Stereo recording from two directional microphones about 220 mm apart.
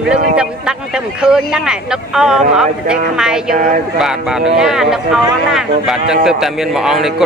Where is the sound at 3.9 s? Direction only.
Centre (ahead or behind).